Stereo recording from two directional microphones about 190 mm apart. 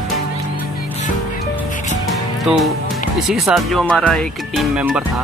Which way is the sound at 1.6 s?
45° left (ahead or behind).